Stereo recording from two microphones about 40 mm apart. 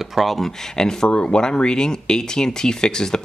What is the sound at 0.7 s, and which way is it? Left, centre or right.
Speech, centre.